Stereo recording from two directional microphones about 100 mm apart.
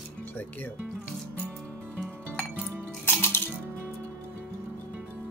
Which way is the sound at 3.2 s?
20° left (ahead or behind).